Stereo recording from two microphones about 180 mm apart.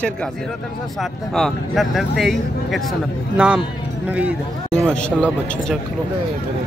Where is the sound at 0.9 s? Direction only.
Centre (ahead or behind).